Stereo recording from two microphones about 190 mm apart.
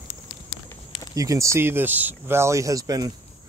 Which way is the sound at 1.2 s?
15° right (ahead or behind).